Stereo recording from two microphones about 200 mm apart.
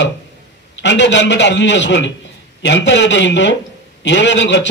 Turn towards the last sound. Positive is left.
turn(degrees=65)  # may be behind; listen again after turning